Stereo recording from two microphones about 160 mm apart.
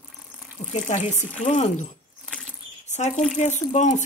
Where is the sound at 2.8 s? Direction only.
45° left (ahead or behind).